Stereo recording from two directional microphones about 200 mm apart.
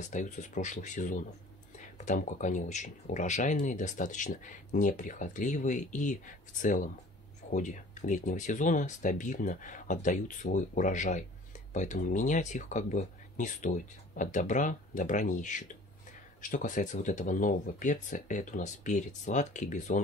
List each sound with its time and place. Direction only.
0.1 s speech: 35° left (ahead or behind)